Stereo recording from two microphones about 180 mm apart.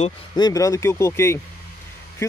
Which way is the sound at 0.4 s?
20° left (ahead or behind).